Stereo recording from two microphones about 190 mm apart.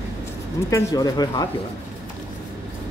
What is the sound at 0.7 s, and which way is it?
Speech, 20° left (ahead or behind).